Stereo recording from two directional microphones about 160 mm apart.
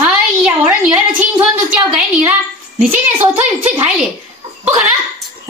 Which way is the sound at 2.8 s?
10° right (ahead or behind).